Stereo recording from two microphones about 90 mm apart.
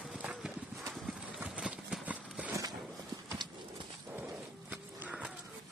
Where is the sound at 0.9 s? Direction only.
5° right (ahead or behind).